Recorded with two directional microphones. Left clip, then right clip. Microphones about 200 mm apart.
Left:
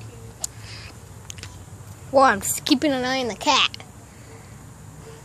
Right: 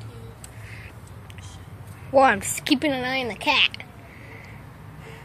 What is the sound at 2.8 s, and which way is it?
Speech, 25° left (ahead or behind).